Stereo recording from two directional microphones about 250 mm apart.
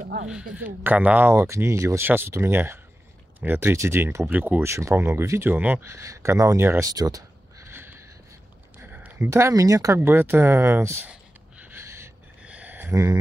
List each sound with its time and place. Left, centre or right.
0.0 s speech: right
0.6 s speech: centre
8.7 s a sound: centre